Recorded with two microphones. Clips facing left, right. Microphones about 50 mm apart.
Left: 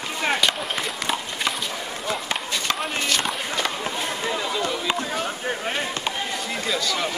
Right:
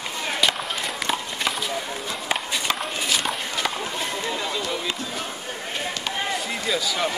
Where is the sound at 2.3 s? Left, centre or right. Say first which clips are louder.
Right 5 dB; centre.